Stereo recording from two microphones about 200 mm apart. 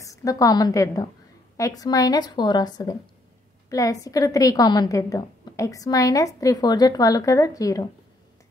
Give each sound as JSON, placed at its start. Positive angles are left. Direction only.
{"t": 0.0, "sound": "a woman's voice", "side_deg": 15}